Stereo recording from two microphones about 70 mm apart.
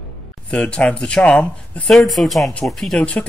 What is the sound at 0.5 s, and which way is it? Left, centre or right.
Speech, centre.